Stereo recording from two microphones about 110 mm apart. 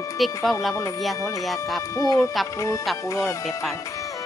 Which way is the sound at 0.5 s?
Centre (ahead or behind).